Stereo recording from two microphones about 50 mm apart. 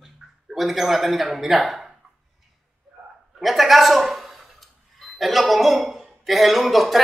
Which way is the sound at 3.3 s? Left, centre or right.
Centre.